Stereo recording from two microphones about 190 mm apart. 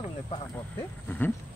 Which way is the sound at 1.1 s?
10° left (ahead or behind).